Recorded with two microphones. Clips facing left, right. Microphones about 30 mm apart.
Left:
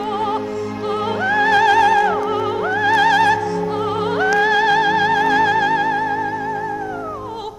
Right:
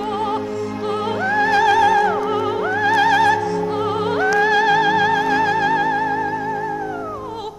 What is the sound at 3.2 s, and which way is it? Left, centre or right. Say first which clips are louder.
Opera: even; centre.